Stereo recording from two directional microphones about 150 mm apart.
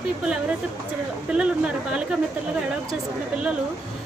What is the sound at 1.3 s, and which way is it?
Speech, 5° right (ahead or behind).